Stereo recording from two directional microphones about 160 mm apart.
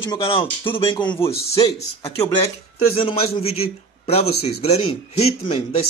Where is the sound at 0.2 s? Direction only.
35° left (ahead or behind).